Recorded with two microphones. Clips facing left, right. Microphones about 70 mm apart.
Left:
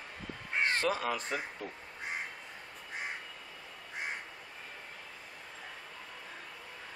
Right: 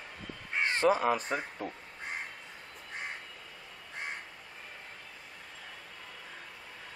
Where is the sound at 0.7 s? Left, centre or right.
Right.